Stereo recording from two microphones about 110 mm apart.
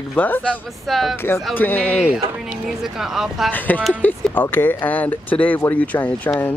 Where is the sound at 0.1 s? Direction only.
15° left (ahead or behind).